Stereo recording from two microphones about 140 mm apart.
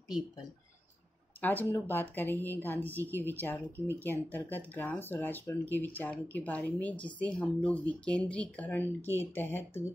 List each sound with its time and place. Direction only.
1.4 s speech: 15° left (ahead or behind)